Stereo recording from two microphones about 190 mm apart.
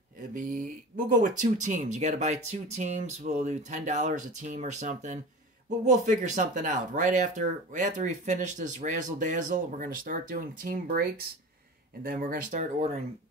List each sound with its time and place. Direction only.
0.3 s speech: 45° right (ahead or behind)